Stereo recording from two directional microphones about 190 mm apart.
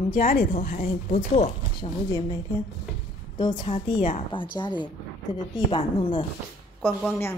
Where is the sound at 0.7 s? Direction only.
35° left (ahead or behind).